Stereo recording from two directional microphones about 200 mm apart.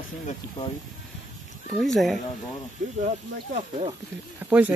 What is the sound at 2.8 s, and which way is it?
Speech, 40° right (ahead or behind).